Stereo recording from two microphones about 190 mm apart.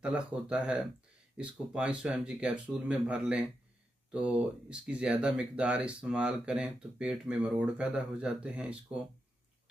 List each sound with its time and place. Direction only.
0.0 s speech: 5° right (ahead or behind)